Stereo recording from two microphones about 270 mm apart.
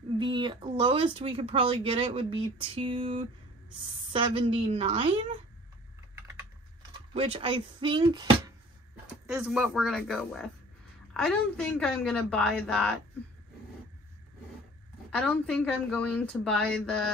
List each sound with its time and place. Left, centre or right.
0.2 s speech: centre
7.2 s speech: right
9.3 s a woman's voice: centre
15.0 s a woman's voice: centre